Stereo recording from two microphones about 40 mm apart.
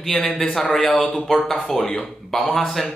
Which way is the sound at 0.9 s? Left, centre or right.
Centre.